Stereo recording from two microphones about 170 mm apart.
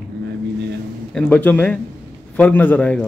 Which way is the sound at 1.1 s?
10° left (ahead or behind).